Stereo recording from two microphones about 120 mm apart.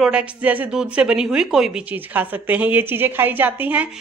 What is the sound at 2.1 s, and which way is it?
A woman's voice, 15° right (ahead or behind).